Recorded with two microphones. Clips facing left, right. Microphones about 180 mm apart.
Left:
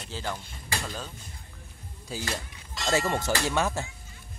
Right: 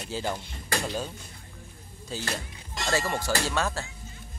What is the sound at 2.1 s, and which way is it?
Speech, 10° left (ahead or behind).